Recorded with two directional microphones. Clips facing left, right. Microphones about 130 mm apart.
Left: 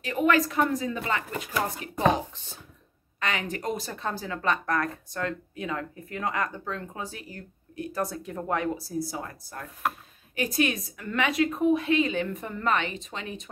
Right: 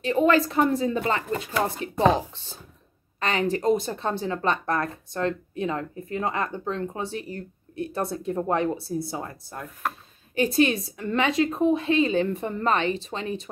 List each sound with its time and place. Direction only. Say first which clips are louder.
0.0 s speech: right 3 dB; 30° right (ahead or behind)